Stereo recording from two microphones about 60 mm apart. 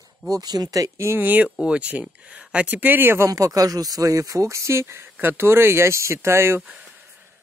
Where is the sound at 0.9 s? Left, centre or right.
Right.